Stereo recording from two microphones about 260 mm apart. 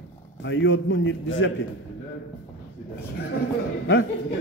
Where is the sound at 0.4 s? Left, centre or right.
Left.